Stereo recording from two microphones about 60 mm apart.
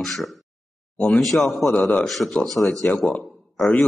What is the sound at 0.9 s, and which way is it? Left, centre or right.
Speech, left.